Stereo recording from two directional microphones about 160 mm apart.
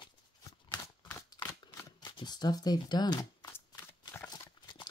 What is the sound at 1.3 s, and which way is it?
Shuffling cards, 25° left (ahead or behind).